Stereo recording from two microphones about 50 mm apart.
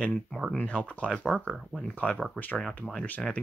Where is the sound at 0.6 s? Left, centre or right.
Left.